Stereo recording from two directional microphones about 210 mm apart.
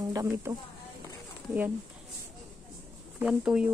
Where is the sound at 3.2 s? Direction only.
5° right (ahead or behind).